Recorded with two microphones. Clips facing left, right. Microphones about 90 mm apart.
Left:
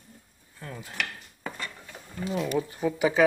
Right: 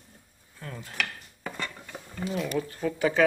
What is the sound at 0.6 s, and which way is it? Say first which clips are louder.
Speech: even; 5° left (ahead or behind).